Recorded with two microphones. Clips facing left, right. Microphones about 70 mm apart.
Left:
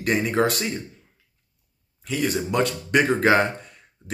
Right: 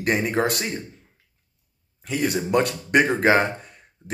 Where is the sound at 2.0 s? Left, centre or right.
Right.